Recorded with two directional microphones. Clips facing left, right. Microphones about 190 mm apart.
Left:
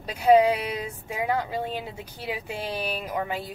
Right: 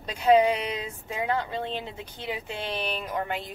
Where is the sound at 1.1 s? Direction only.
10° left (ahead or behind).